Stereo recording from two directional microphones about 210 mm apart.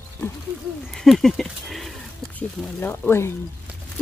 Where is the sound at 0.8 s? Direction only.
Centre (ahead or behind).